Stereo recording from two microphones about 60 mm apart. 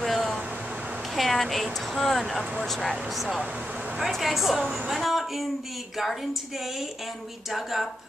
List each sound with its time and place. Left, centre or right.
0.0 s a sound: centre
1.1 s speech: centre
7.5 s speech: centre